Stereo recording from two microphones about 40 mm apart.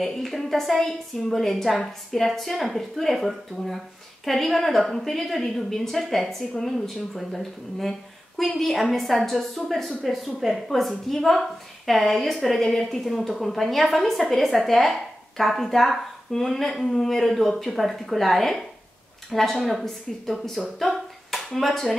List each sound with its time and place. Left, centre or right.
0.0 s a woman's voice: centre
8.4 s a woman's voice: centre
10.0 s a woman's voice: centre
20.6 s speech: centre